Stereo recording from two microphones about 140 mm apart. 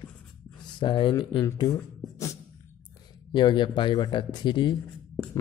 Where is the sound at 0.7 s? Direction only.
35° left (ahead or behind).